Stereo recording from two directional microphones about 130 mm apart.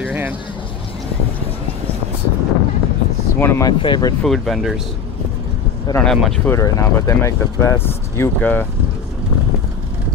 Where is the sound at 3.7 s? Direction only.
35° left (ahead or behind).